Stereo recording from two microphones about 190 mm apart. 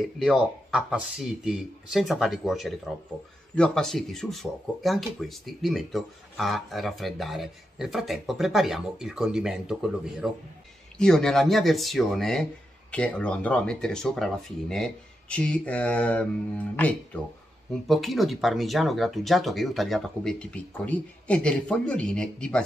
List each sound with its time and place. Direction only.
0.2 s speech: centre (ahead or behind)